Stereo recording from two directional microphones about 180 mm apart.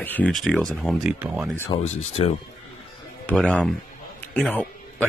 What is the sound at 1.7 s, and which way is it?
Speech, 35° left (ahead or behind).